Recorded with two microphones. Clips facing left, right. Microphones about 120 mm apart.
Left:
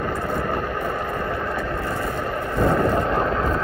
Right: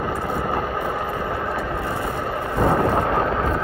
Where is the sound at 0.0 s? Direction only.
5° right (ahead or behind).